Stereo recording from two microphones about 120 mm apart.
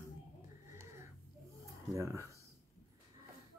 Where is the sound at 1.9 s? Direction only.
25° right (ahead or behind).